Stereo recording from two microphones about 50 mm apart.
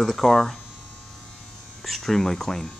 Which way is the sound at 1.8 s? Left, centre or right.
Centre.